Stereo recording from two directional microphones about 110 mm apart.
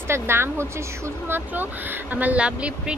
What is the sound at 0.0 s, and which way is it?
A woman's voice, 20° right (ahead or behind).